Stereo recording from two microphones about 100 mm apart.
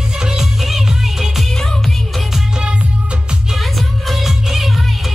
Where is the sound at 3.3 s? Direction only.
Centre (ahead or behind).